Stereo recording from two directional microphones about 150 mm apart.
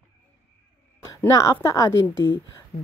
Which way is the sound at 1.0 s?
20° left (ahead or behind).